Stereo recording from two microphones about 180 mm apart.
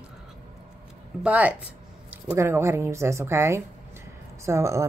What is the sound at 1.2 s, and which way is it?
Speech, 10° right (ahead or behind).